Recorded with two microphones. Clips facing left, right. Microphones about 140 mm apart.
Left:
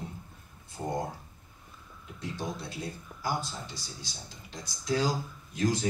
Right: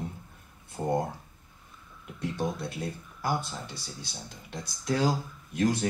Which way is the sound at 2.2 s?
60° right (ahead or behind).